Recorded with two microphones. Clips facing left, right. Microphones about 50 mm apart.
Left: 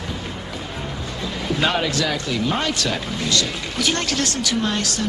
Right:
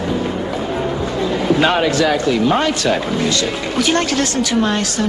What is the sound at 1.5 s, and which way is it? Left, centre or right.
A man's voice, right.